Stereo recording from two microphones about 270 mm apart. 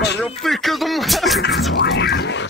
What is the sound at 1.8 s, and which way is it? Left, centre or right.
Speech, left.